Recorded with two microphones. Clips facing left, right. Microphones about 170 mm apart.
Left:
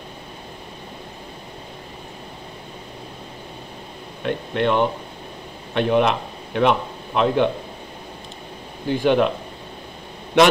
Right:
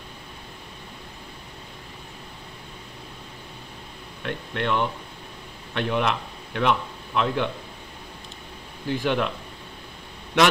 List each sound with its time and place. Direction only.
4.2 s speech: 20° left (ahead or behind)
8.8 s speech: 25° left (ahead or behind)